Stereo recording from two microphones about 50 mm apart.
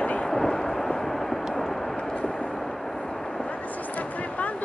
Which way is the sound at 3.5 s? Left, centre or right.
Left.